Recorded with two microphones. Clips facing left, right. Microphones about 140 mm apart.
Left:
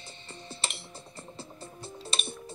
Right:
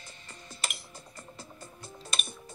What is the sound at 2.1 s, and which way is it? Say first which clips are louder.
Music: left 2 dB; 30° left (ahead or behind).